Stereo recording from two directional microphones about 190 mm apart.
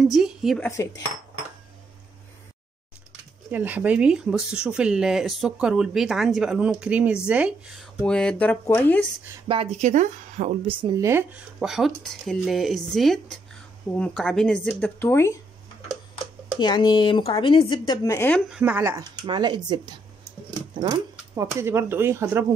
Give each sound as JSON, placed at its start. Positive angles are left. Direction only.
{"t": 0.0, "sound": "a woman's voice", "side_deg": 0}
{"t": 0.6, "sound": "speech", "side_deg": 15}
{"t": 3.1, "sound": "speech", "side_deg": -10}
{"t": 9.5, "sound": "speech", "side_deg": -30}
{"t": 10.7, "sound": "speech", "side_deg": -25}
{"t": 11.1, "sound": "speech", "side_deg": -10}
{"t": 16.5, "sound": "speech", "side_deg": 25}
{"t": 18.5, "sound": "speech", "side_deg": -10}
{"t": 19.2, "sound": "speech", "side_deg": -25}